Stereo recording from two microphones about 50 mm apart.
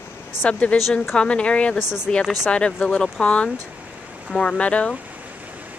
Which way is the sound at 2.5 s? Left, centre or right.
Centre.